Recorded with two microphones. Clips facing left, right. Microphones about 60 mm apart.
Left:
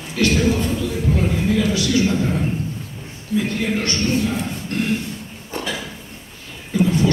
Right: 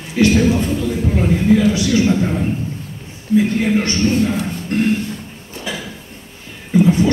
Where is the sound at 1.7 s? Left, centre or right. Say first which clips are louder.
Right 4 dB; right.